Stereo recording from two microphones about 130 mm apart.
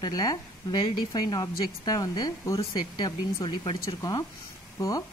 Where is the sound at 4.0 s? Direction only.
25° left (ahead or behind).